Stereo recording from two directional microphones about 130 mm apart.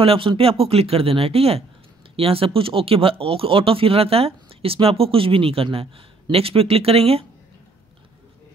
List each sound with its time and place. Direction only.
0.0 s speech: 45° right (ahead or behind)